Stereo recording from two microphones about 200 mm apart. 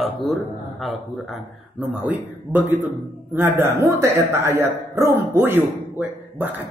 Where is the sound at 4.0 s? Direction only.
10° right (ahead or behind).